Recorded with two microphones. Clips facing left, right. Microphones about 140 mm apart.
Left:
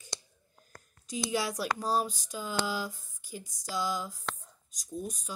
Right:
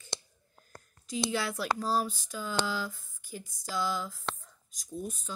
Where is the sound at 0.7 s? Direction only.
30° right (ahead or behind).